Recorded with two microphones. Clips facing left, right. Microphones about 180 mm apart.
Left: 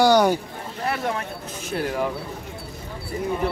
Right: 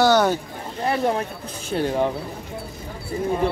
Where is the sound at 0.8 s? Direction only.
30° right (ahead or behind).